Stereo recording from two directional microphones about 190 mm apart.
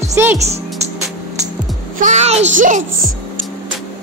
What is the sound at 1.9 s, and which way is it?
Speech, 40° right (ahead or behind).